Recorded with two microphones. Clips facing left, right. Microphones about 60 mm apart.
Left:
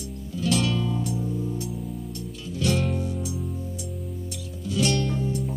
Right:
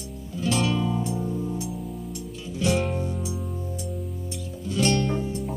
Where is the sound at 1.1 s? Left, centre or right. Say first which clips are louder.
Right 1 dB; right.